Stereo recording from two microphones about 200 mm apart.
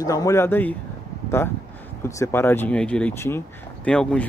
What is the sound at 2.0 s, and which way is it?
Speech, 10° left (ahead or behind).